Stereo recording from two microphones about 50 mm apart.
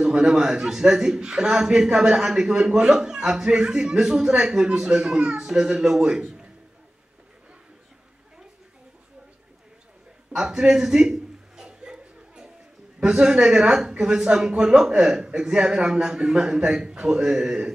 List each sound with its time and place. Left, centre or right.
0.0 s a man's voice: centre
10.3 s chuckle: centre
13.1 s a man's voice: centre